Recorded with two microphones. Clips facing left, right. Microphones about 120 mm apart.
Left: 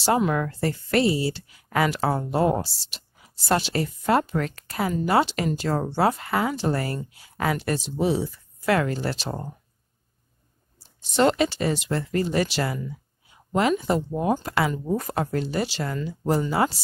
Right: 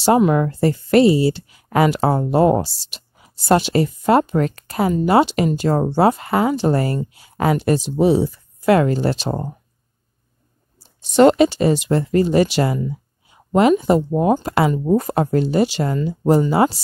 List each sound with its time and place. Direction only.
0.0 s speech: 20° right (ahead or behind)
9.3 s speech: 30° right (ahead or behind)
11.1 s speech: 20° right (ahead or behind)